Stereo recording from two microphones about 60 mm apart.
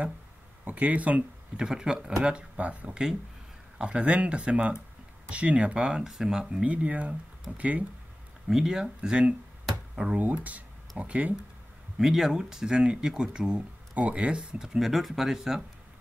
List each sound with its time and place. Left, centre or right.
0.7 s speech: right
1.6 s speech: centre
5.8 s speech: centre
6.6 s speech: right
8.5 s speech: centre
10.1 s speech: right
12.0 s speech: centre